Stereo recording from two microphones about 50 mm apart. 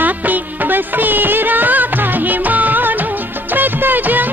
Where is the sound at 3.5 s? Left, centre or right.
Right.